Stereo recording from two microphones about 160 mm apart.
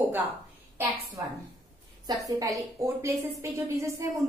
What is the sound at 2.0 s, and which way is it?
A woman's voice, 20° right (ahead or behind).